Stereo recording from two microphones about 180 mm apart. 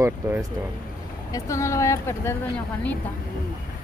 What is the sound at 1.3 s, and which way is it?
A woman's voice, 15° left (ahead or behind).